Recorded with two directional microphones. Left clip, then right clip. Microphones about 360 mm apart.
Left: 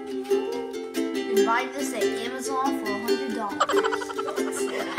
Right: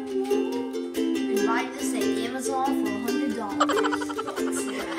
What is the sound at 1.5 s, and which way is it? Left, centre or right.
Music, left.